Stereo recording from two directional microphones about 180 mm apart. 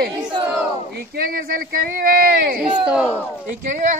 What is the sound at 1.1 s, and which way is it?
Speech, 55° right (ahead or behind).